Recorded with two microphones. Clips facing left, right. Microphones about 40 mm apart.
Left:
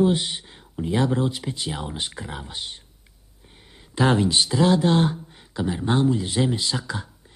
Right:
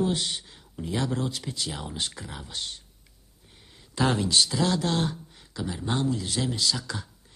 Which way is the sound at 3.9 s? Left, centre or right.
Left.